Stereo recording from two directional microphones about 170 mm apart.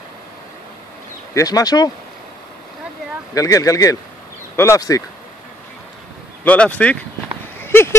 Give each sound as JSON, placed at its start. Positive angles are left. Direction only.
{"t": 1.3, "sound": "speech", "side_deg": 20}
{"t": 3.3, "sound": "speech", "side_deg": 20}
{"t": 6.4, "sound": "speech", "side_deg": 10}